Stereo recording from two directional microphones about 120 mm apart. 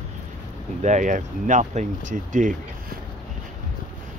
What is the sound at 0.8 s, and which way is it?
Speech, 90° right.